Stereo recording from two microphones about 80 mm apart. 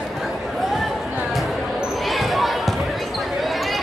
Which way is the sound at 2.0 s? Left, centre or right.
Centre.